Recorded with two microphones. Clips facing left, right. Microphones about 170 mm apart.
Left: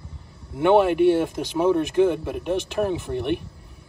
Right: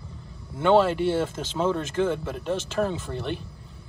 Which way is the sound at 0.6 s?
15° left (ahead or behind).